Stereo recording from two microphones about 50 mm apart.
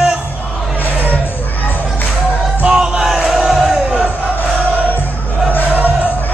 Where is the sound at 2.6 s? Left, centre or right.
Centre.